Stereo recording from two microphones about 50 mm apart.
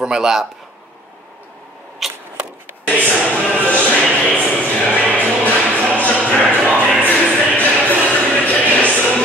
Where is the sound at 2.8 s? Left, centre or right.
Left.